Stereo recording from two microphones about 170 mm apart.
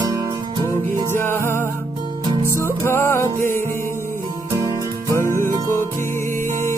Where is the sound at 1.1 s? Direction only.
15° left (ahead or behind).